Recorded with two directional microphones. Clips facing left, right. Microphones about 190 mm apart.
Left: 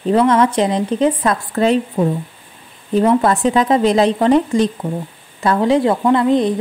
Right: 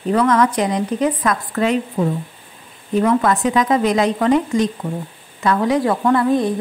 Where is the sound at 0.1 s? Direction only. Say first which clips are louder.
Left 2 dB; 25° left (ahead or behind).